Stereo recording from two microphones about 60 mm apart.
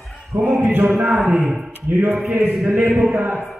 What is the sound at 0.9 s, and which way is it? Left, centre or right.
Speech, right.